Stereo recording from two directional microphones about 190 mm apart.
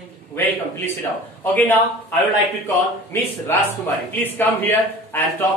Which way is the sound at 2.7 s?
10° left (ahead or behind).